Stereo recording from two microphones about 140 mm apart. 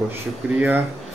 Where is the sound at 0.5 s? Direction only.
10° right (ahead or behind).